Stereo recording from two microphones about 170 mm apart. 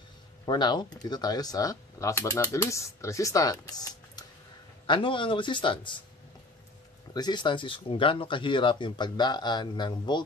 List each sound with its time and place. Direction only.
0.5 s speech: 25° left (ahead or behind)
7.2 s speech: 25° left (ahead or behind)